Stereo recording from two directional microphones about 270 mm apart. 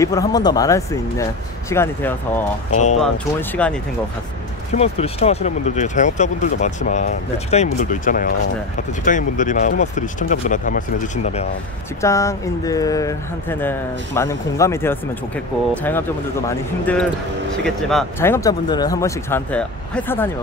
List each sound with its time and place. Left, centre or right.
0.0 s speech: centre
4.7 s speech: left
12.0 s speech: centre